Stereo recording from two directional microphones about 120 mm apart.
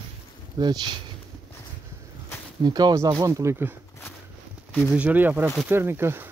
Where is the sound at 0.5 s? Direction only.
35° right (ahead or behind).